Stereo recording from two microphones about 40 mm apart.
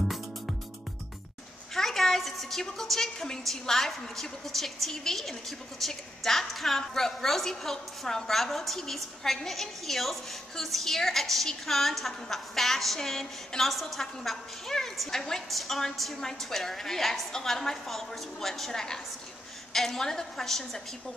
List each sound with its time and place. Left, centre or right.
1.8 s a woman's voice: centre
14.7 s a woman's voice: centre